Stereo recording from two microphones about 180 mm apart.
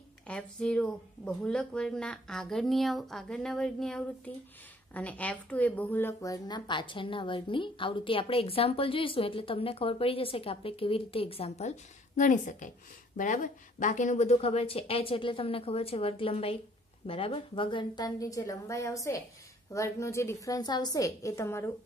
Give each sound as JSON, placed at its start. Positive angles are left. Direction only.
{"t": 0.3, "sound": "a woman's voice", "side_deg": 5}